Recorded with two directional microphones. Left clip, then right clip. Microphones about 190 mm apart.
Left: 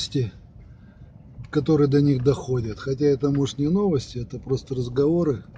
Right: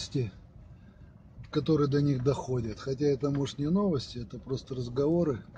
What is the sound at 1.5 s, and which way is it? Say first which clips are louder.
Speech: left 8 dB; 35° left (ahead or behind).